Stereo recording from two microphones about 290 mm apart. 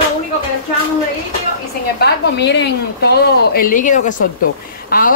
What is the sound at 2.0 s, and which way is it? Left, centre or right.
A woman's voice, left.